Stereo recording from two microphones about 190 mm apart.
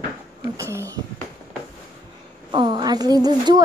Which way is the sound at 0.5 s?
15° right (ahead or behind).